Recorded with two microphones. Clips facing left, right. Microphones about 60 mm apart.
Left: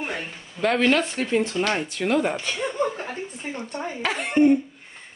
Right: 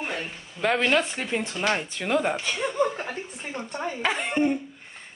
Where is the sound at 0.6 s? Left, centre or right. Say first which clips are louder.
Left 2 dB; centre.